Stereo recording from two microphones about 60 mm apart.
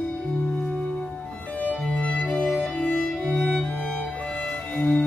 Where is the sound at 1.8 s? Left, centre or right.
Centre.